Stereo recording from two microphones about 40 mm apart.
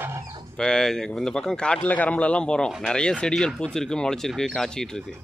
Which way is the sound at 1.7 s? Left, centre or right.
Left.